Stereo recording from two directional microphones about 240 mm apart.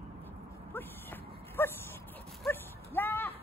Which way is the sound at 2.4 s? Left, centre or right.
Centre.